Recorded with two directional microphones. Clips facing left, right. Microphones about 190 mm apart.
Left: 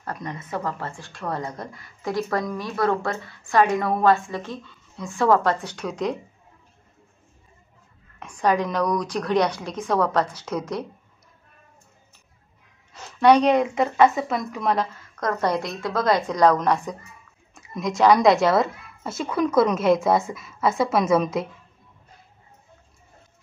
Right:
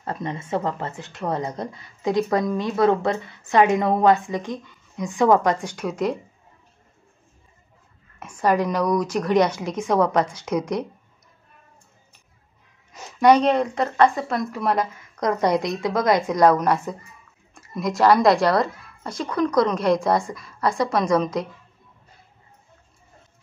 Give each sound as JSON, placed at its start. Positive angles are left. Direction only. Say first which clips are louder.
{"t": 0.0, "sound": "speech", "louder": "right 4 dB", "side_deg": -25}
{"t": 8.2, "sound": "a woman's voice", "louder": "right 1 dB", "side_deg": -10}
{"t": 12.9, "sound": "a sound", "louder": "right 1 dB", "side_deg": -10}
{"t": 13.4, "sound": "a woman's voice", "louder": "left 1 dB", "side_deg": 0}
{"t": 15.0, "sound": "a woman's voice", "louder": "right 3 dB", "side_deg": -15}